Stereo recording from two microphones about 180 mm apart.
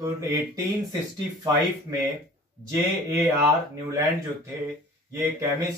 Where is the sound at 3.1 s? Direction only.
15° right (ahead or behind).